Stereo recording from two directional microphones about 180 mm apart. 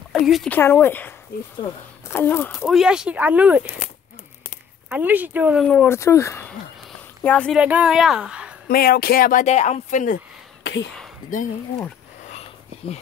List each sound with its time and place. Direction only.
0.3 s speech: 5° left (ahead or behind)
2.6 s speech: 5° right (ahead or behind)
4.8 s speech: 10° right (ahead or behind)
5.7 s speech: 10° left (ahead or behind)
7.5 s a woman's voice: 5° right (ahead or behind)
8.6 s speech: 55° left (ahead or behind)
10.6 s a sound: 80° left